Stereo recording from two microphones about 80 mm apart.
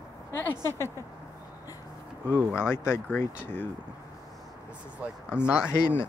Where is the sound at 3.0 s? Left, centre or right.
Left.